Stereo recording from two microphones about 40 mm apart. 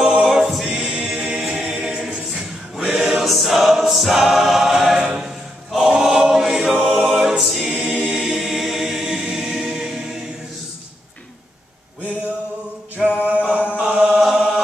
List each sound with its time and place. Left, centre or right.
0.0 s choir: centre
1.0 s a capella: centre
1.9 s choir: centre
2.7 s choir: centre
3.3 s choir: centre
7.2 s a capella: centre
7.9 s choir: centre
13.0 s a sound: centre
13.7 s chant: right
14.2 s chant: centre